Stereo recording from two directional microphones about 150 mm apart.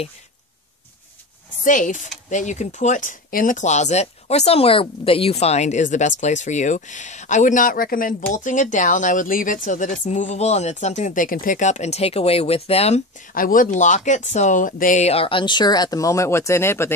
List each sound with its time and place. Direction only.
1.6 s speech: 60° left (ahead or behind)
8.3 s speech: 60° left (ahead or behind); by 13.0 s 45° left (ahead or behind)
13.3 s speech: 70° left (ahead or behind); by 16.9 s 15° left (ahead or behind)